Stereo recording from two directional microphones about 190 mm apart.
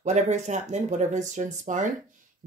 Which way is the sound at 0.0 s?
40° right (ahead or behind).